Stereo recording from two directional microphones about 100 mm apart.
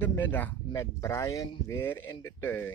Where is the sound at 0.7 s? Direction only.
30° left (ahead or behind).